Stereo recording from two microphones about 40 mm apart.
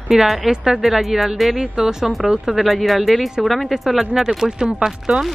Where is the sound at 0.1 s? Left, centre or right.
Centre.